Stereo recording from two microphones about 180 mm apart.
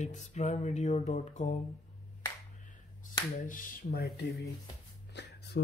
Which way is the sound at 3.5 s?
50° left (ahead or behind).